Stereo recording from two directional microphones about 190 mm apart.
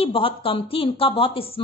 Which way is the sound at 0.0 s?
30° left (ahead or behind).